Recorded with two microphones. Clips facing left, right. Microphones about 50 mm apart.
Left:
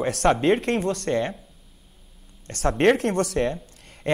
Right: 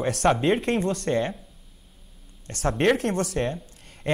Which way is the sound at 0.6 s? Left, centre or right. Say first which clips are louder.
Even; left.